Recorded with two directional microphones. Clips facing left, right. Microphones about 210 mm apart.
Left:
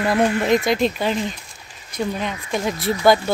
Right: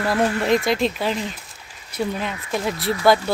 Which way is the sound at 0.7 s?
Centre (ahead or behind).